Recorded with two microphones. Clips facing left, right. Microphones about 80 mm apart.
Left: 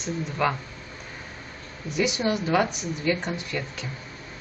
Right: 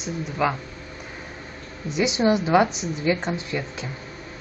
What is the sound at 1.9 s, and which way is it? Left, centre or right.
Speech, right.